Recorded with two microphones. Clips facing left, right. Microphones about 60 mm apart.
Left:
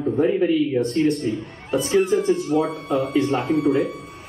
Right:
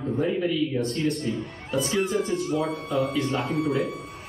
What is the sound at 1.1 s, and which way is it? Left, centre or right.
Speech, centre.